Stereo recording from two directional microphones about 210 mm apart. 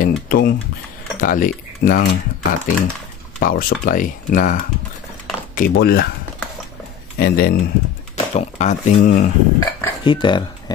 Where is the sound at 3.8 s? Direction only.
40° left (ahead or behind).